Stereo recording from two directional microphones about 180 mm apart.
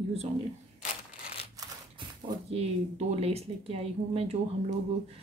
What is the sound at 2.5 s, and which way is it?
A woman's voice, 35° right (ahead or behind).